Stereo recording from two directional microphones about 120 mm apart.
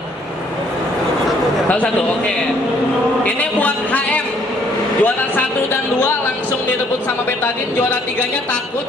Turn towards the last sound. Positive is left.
turn(degrees=15)  # may be behind; listen again after turning